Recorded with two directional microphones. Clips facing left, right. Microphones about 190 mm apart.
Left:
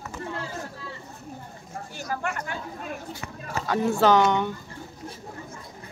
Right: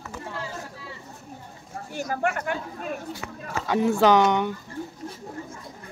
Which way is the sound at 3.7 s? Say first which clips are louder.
Right 1 dB; 15° right (ahead or behind).